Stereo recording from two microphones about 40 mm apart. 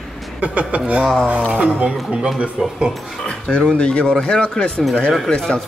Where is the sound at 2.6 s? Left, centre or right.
Centre.